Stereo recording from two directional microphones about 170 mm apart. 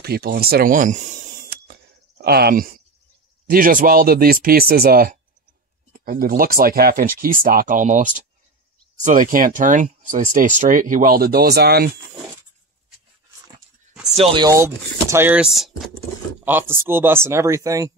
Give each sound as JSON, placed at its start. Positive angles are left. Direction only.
{"t": 0.0, "sound": "speech", "side_deg": -65}
{"t": 2.2, "sound": "speech", "side_deg": -65}
{"t": 14.1, "sound": "speech", "side_deg": -30}
{"t": 14.5, "sound": "speech", "side_deg": -15}
{"t": 16.4, "sound": "speech", "side_deg": -10}